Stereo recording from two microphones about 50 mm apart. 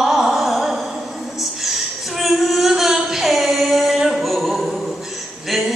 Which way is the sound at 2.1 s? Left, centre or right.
Centre.